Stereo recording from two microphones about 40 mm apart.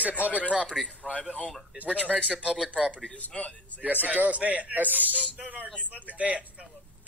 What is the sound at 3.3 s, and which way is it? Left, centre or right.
Speech, left.